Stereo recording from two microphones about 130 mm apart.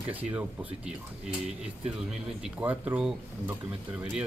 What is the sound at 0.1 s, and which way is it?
Speech, 15° right (ahead or behind).